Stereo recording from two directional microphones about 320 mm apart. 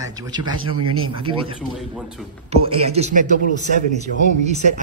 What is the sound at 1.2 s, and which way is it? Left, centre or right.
A man's voice, centre.